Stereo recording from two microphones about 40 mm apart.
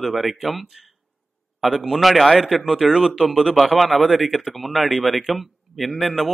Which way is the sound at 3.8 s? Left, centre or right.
Centre.